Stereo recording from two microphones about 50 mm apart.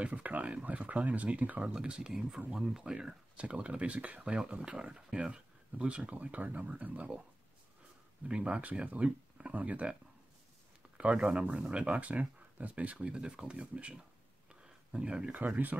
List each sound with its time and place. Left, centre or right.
0.0 s speech: right
8.3 s speech: right
11.0 s speech: right
14.5 s a sound: right
15.3 s speech: right